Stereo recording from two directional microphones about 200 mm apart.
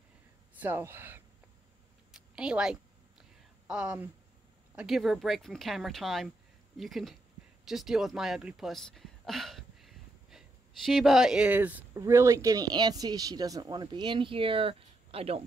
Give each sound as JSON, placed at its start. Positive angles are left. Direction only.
{"t": 0.6, "sound": "speech", "side_deg": -10}
{"t": 2.1, "sound": "a sound", "side_deg": -5}
{"t": 4.7, "sound": "speech", "side_deg": 0}